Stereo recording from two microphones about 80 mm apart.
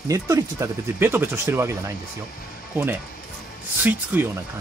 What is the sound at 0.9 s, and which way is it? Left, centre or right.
Speech, right.